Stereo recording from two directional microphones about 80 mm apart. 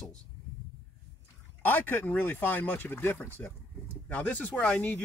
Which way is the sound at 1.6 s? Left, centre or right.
Left.